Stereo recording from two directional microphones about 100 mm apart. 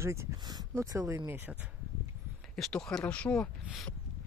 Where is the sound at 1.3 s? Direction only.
20° right (ahead or behind).